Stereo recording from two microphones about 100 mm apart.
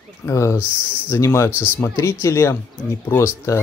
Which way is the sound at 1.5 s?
15° right (ahead or behind).